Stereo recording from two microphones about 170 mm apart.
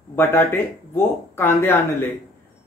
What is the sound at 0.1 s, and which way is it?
Speech, 15° left (ahead or behind).